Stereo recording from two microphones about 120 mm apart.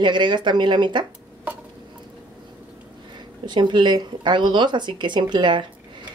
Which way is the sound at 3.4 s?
40° right (ahead or behind).